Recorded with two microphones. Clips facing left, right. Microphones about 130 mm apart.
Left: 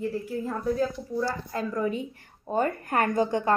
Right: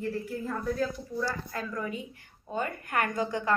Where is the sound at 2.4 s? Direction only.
40° left (ahead or behind).